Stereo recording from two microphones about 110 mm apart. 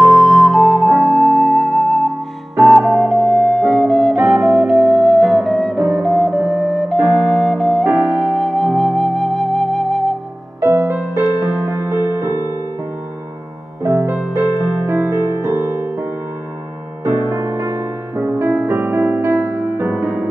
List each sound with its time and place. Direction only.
0.1 s flute: centre (ahead or behind)
7.2 s music: 5° left (ahead or behind)
8.0 s flute: centre (ahead or behind)
10.6 s music: 25° right (ahead or behind)
13.8 s music: 25° right (ahead or behind)